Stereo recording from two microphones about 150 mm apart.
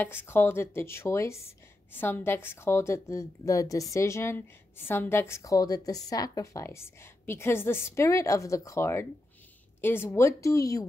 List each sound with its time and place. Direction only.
0.0 s a woman's voice: 15° left (ahead or behind)